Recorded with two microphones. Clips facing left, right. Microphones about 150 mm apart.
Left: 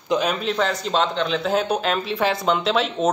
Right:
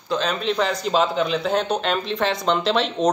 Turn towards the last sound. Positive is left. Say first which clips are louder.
# even
turn(degrees=0)  # may be behind; listen again after turning